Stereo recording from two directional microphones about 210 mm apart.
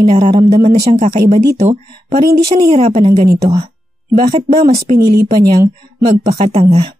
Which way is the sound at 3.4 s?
20° right (ahead or behind).